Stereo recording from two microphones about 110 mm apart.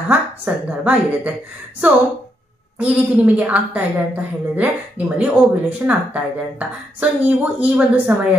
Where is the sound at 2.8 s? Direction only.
15° right (ahead or behind).